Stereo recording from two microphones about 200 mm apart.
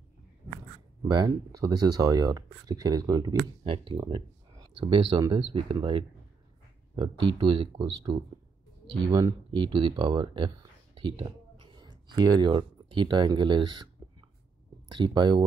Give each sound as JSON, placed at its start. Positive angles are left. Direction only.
{"t": 1.0, "sound": "speech", "side_deg": -20}
{"t": 9.0, "sound": "speech", "side_deg": -20}
{"t": 14.9, "sound": "speech", "side_deg": -25}